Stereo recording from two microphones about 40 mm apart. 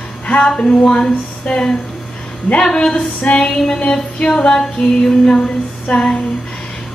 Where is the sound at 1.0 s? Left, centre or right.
Centre.